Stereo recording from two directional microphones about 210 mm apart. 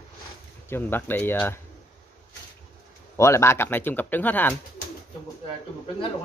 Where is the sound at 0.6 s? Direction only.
10° left (ahead or behind).